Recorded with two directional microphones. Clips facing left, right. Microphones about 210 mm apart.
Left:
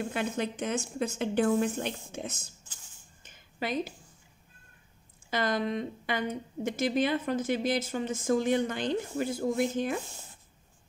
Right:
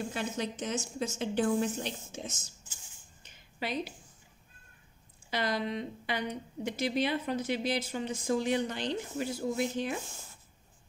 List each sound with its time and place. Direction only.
0.1 s a woman's voice: 55° left (ahead or behind)
3.2 s a sound: 50° left (ahead or behind)
5.3 s speech: 50° left (ahead or behind)